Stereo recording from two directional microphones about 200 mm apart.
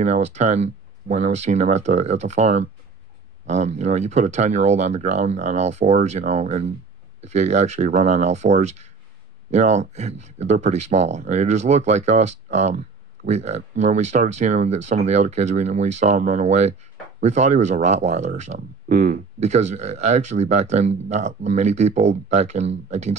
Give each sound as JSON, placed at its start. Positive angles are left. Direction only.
{"t": 0.0, "sound": "speech", "side_deg": -35}